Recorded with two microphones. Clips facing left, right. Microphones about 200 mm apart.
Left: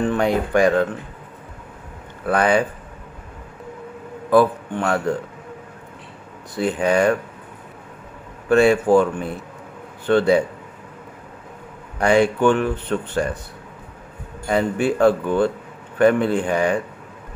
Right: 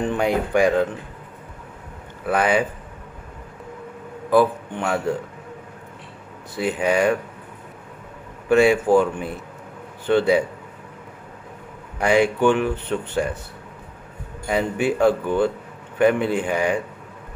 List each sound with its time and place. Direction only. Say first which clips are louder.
0.0 s speech: left 2 dB; 15° right (ahead or behind)
2.2 s speech: left 2 dB; 5° right (ahead or behind)
4.3 s speech: left 2 dB; 10° right (ahead or behind)
6.5 s speech: left 2 dB; 10° right (ahead or behind)
8.5 s speech: left 1 dB; 10° right (ahead or behind)
12.0 s speech: left 2 dB; 10° right (ahead or behind)
14.5 s speech: left 2 dB; 10° right (ahead or behind)